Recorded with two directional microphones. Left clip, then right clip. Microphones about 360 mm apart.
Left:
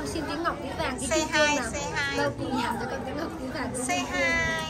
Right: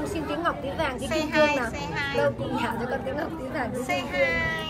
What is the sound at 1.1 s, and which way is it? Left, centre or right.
Speech, centre.